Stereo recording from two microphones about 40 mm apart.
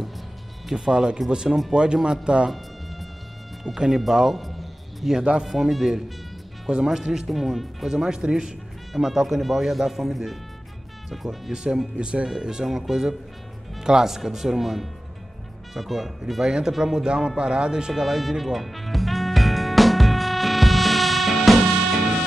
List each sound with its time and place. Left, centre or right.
0.7 s speech: centre
3.6 s speech: centre
4.4 s music: centre
5.1 s speech: right
5.4 s speech: centre
8.0 s speech: centre
8.9 s speech: centre
11.5 s speech: centre
12.6 s speech: centre
17.4 s music: right; by 22.2 s centre